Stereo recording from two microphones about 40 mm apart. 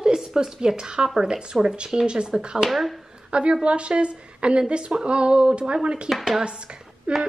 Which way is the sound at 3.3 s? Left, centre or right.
Right.